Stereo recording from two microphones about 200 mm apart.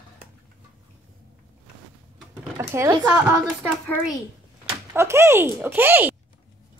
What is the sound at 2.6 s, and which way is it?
Speech, 15° right (ahead or behind).